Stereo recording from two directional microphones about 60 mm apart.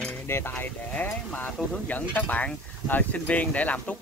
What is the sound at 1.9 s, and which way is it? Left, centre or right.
Speech, left.